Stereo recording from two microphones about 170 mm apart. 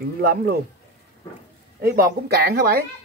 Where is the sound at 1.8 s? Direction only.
65° right (ahead or behind).